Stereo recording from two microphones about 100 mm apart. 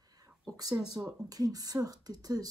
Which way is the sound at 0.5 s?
35° right (ahead or behind).